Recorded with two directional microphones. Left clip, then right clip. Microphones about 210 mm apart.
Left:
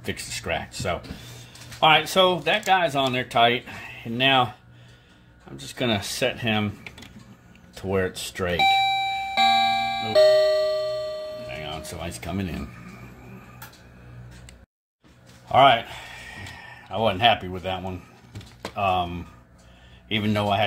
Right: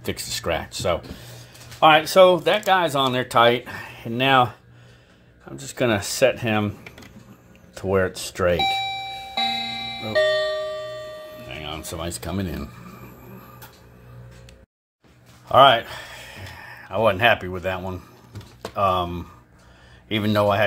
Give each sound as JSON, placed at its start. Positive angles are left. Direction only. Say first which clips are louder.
{"t": 0.0, "sound": "speech", "louder": "right 4 dB", "side_deg": -30}
{"t": 5.6, "sound": "speech", "louder": "right 4 dB", "side_deg": -25}
{"t": 7.7, "sound": "speech", "louder": "right 4 dB", "side_deg": -20}
{"t": 8.8, "sound": "music", "louder": "left 6 dB", "side_deg": 30}
{"t": 11.4, "sound": "music", "louder": "even", "side_deg": -35}
{"t": 15.4, "sound": "speech", "louder": "right 3 dB", "side_deg": -40}
{"t": 16.1, "sound": "a sound", "louder": "even", "side_deg": -20}
{"t": 18.8, "sound": "speech", "louder": "right 2 dB", "side_deg": -25}